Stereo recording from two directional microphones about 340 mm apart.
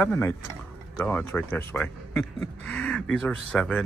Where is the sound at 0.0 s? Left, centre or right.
Centre.